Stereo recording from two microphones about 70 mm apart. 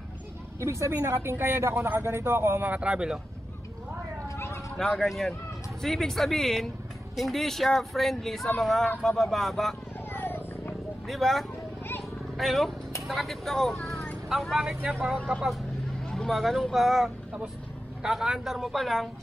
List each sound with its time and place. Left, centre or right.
0.6 s speech: right
2.7 s speech: centre
4.4 s cat: left
4.7 s speech: centre
10.1 s purr: left
11.1 s speech: centre
16.1 s speech: centre